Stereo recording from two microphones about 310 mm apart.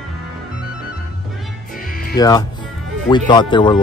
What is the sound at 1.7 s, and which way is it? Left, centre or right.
Music, left.